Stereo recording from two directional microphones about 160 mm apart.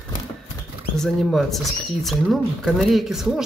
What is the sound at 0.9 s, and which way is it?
Speech, centre (ahead or behind).